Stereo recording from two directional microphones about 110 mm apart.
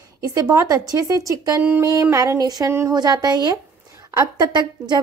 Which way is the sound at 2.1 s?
35° right (ahead or behind).